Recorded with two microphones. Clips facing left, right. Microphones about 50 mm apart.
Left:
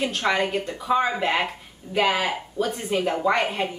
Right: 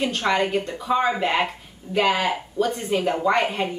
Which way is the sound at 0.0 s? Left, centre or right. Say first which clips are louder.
Right 1 dB; centre.